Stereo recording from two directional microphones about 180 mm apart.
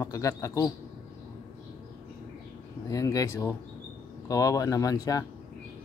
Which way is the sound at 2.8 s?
20° left (ahead or behind).